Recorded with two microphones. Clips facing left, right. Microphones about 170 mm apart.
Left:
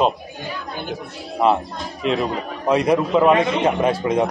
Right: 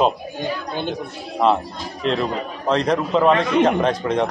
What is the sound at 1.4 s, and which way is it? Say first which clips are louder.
A man's voice: even; 5° left (ahead or behind).